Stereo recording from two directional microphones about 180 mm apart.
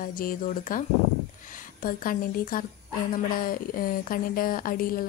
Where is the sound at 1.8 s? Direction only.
50° left (ahead or behind).